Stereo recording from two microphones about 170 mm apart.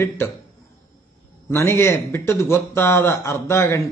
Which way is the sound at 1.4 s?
15° left (ahead or behind).